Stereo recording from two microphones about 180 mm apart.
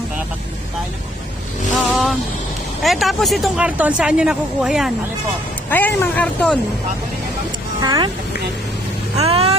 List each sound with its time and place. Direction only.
1.9 s vehicle: centre (ahead or behind)
2.8 s speech: centre (ahead or behind)
5.7 s speech: 10° left (ahead or behind)
7.8 s speech: 20° right (ahead or behind)
9.3 s speech: 35° right (ahead or behind)